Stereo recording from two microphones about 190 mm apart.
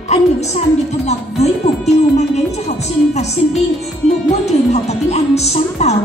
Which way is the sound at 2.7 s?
35° left (ahead or behind).